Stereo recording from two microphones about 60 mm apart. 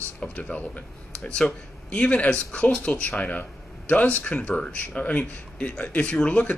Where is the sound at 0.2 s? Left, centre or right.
Left.